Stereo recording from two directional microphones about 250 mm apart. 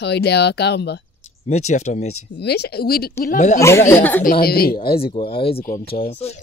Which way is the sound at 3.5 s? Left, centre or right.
Centre.